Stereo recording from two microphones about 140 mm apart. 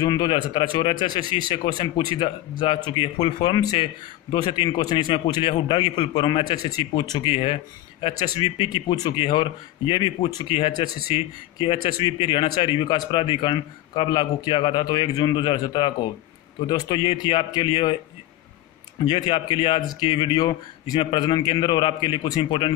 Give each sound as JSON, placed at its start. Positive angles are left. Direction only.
{"t": 0.0, "sound": "speech", "side_deg": 35}
{"t": 7.3, "sound": "speech", "side_deg": 40}
{"t": 19.0, "sound": "speech", "side_deg": 35}